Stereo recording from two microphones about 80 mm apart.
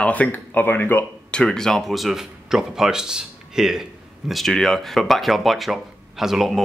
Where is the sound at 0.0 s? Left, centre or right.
Centre.